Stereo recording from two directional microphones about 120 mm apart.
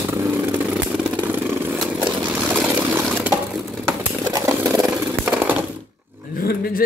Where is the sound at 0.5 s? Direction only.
10° right (ahead or behind).